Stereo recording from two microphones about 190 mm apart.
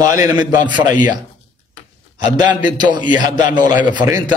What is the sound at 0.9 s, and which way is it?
Speech, 45° left (ahead or behind).